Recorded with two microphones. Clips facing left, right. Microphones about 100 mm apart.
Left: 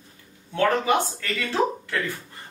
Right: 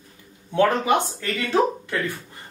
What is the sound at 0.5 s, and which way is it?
Speech, 20° right (ahead or behind).